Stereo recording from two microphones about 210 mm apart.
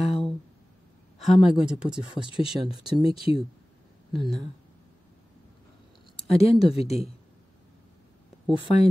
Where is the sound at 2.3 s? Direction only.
25° left (ahead or behind).